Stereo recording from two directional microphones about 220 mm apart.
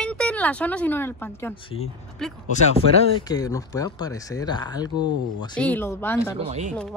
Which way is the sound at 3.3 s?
15° left (ahead or behind).